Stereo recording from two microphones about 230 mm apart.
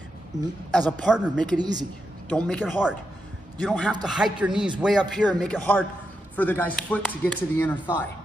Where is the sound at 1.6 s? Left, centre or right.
Centre.